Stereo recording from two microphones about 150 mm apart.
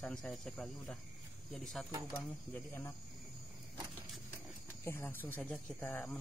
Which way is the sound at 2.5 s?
15° left (ahead or behind).